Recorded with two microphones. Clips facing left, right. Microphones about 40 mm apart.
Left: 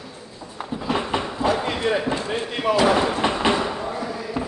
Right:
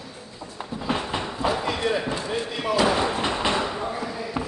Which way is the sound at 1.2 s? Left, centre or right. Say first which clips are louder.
Left 3 dB; centre.